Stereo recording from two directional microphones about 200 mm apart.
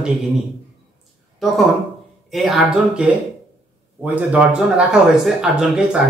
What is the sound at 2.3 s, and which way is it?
Speech, centre (ahead or behind).